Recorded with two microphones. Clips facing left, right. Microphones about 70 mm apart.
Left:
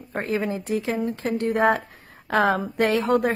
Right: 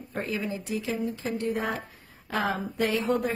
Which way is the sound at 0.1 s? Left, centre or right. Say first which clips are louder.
Left 6 dB; left.